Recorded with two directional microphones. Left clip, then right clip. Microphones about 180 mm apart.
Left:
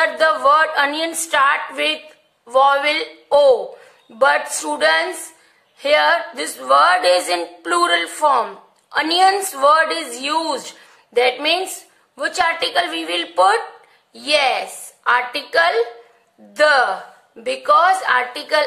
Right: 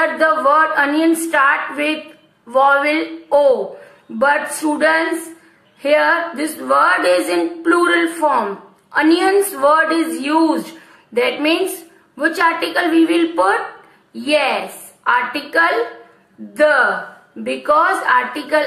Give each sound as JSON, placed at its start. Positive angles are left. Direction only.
{"t": 0.0, "sound": "a woman's voice", "side_deg": 45}
{"t": 11.1, "sound": "a woman's voice", "side_deg": 45}